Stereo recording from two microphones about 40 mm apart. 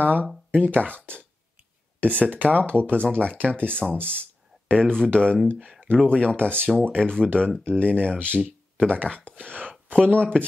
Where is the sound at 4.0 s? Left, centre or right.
Right.